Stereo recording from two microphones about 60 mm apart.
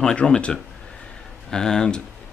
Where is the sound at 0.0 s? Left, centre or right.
Centre.